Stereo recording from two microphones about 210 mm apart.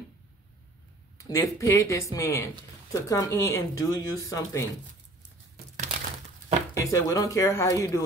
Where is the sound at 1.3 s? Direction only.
15° left (ahead or behind).